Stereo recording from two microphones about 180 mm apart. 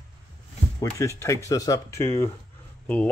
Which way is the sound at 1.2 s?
15° left (ahead or behind).